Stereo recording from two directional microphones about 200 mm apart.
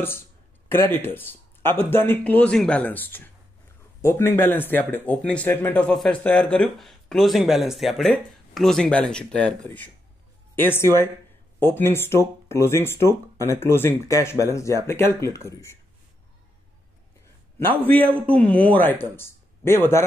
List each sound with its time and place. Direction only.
0.7 s speech: 10° left (ahead or behind)
17.6 s speech: 10° left (ahead or behind)